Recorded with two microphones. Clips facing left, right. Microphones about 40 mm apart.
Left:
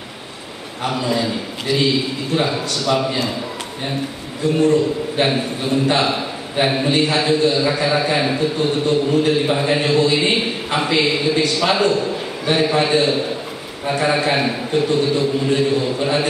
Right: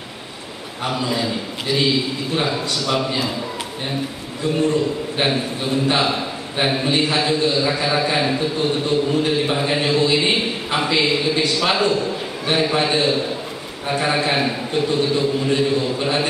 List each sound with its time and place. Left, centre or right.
0.8 s a man's voice: centre
4.6 s a man's voice: centre